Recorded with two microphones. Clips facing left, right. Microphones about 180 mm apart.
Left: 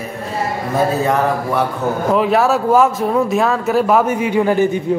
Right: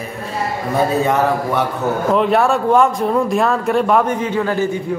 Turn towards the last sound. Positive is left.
turn(degrees=15)  # may be behind; listen again after turning